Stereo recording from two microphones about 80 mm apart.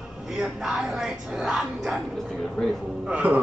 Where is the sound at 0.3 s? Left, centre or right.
Centre.